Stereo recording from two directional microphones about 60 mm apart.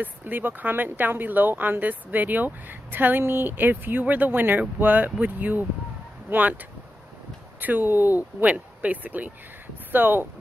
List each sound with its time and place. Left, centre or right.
0.0 s speech: right
7.6 s speech: right